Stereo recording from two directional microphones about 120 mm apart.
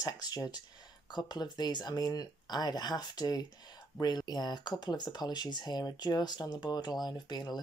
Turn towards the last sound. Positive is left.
turn(degrees=35)  # may be behind; listen again after turning